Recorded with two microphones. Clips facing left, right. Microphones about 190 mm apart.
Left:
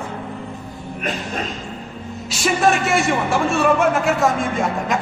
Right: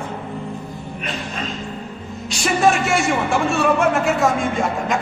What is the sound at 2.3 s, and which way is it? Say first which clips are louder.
A man's voice: even; centre (ahead or behind).